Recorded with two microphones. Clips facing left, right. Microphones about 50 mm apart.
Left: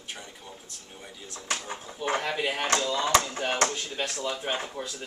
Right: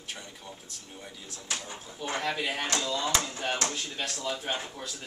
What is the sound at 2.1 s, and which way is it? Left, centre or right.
Speech, centre.